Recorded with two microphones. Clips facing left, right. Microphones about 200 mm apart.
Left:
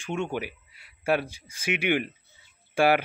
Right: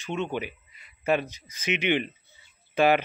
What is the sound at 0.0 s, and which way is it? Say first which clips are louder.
Speech: even; 10° left (ahead or behind).